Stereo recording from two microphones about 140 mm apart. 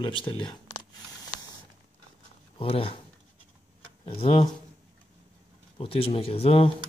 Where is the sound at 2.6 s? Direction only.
40° left (ahead or behind).